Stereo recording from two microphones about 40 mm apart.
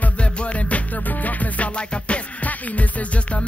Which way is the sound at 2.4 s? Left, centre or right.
Left.